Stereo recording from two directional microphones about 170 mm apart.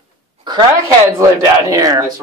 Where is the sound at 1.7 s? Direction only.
20° right (ahead or behind).